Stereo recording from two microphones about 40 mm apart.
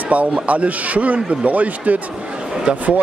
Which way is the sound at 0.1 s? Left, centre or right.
Right.